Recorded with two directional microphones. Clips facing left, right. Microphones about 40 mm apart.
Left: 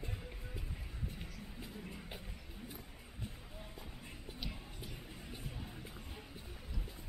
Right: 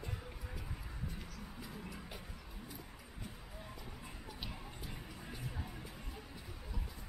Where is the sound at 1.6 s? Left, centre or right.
Left.